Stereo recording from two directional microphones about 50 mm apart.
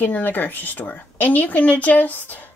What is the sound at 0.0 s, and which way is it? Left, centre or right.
Speech, left.